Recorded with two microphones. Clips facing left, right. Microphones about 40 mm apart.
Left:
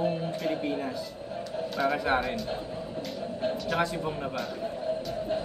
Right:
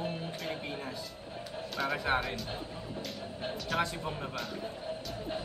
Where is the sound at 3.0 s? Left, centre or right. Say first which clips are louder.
Left 10 dB; centre.